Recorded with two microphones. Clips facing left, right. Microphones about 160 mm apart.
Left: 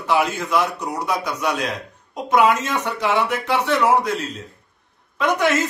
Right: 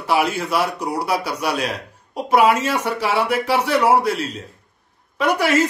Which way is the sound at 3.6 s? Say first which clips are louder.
Right 1 dB; 35° right (ahead or behind).